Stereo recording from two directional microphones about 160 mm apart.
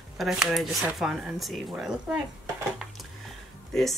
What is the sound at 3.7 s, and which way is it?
Speech, centre (ahead or behind).